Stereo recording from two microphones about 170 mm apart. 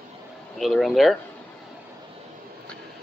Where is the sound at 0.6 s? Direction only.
Centre (ahead or behind).